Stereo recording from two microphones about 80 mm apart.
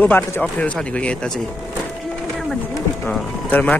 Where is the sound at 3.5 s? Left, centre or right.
Left.